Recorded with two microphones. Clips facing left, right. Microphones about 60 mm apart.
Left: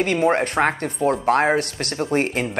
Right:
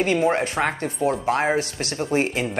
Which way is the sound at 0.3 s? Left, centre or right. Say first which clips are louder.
Left 3 dB; left.